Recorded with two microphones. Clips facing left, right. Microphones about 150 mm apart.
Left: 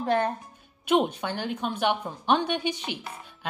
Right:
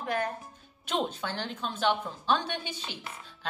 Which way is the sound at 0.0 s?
30° left (ahead or behind).